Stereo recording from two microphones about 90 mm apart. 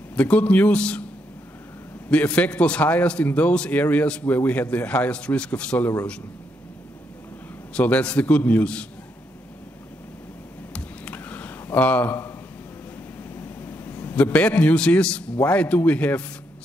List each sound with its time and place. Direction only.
0.1 s a man's voice: 15° left (ahead or behind)
2.0 s a man's voice: 15° left (ahead or behind)
7.7 s a man's voice: 15° left (ahead or behind)
10.7 s a sound: 15° left (ahead or behind)
13.4 s vehicle: 25° left (ahead or behind)
14.1 s a man's voice: 15° left (ahead or behind)